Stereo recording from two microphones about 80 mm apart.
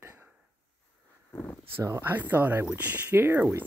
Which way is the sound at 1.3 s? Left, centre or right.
Left.